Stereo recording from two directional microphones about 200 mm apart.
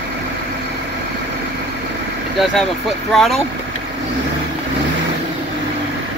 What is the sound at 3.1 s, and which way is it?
Speech, centre (ahead or behind).